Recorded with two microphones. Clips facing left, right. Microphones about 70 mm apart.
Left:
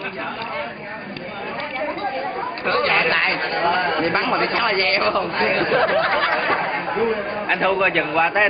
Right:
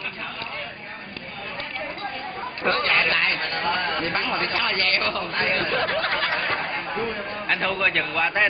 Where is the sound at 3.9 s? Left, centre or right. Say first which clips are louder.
Left 6 dB; left.